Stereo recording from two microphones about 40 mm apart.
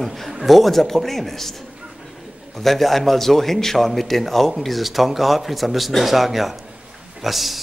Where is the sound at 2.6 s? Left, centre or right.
Centre.